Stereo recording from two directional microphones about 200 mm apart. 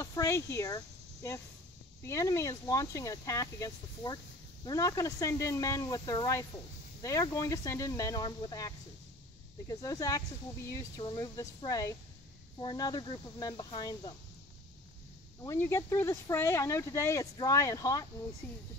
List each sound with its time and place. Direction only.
0.0 s speech: 15° left (ahead or behind)
15.4 s speech: 10° left (ahead or behind)